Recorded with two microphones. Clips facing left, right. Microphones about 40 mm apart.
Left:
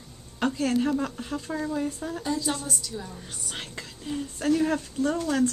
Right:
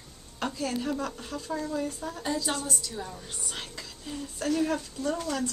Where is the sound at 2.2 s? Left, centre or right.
Centre.